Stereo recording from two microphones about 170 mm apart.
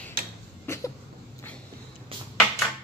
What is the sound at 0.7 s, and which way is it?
Cough, 15° left (ahead or behind).